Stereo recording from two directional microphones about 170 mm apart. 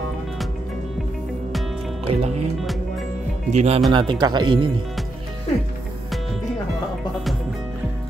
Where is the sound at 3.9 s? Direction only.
25° right (ahead or behind).